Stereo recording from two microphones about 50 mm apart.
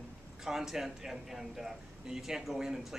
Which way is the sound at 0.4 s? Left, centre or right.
Centre.